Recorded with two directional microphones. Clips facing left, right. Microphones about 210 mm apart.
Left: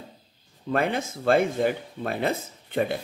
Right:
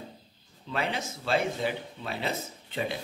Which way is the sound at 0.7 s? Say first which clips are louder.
Left 7 dB; 50° left (ahead or behind).